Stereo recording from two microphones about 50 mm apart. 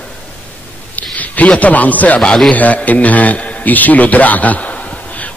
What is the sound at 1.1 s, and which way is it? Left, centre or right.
A man's voice, left.